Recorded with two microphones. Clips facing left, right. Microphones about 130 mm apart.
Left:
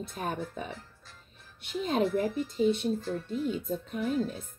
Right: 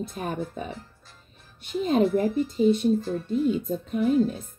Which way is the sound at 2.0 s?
15° right (ahead or behind).